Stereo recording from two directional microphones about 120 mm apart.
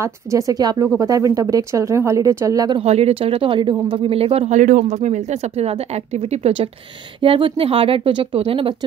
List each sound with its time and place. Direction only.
0.0 s speech: 25° right (ahead or behind)
2.8 s speech: 60° right (ahead or behind)
4.6 s speech: 90° right; by 6.7 s 60° right (ahead or behind)
7.2 s speech: 45° right (ahead or behind)